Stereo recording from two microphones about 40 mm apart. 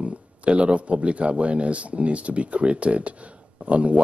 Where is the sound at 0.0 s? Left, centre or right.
Right.